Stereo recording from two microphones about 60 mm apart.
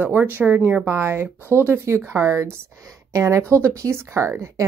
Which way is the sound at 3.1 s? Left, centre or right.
Right.